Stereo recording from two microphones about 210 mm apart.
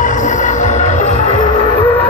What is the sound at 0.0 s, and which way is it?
Music, 35° left (ahead or behind).